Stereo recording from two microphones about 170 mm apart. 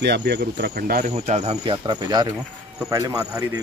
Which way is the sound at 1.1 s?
40° right (ahead or behind).